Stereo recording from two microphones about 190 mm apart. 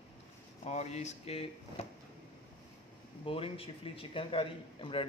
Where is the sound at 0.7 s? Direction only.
35° left (ahead or behind).